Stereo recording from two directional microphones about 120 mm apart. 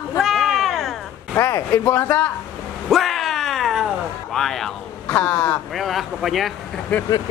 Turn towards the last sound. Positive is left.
turn(degrees=10)  # may be behind; listen again after turning